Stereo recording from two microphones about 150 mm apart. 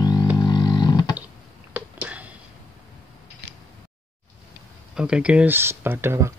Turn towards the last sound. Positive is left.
turn(degrees=-15)  # may be behind; listen again after turning